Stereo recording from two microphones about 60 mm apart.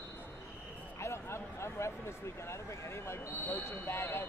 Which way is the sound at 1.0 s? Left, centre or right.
Left.